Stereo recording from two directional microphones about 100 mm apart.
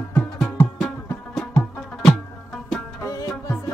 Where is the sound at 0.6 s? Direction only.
5° left (ahead or behind).